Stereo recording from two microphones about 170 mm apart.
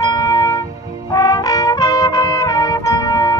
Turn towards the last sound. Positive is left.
turn(degrees=20)  # may be behind; listen again after turning